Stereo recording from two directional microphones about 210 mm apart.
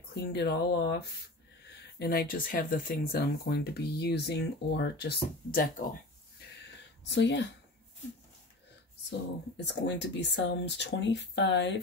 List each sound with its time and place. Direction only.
0.1 s speech: 50° left (ahead or behind)
7.1 s speech: 55° left (ahead or behind)
9.7 s speech: 55° left (ahead or behind)